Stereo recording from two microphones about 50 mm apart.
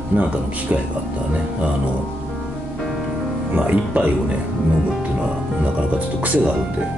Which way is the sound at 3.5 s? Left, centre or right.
Right.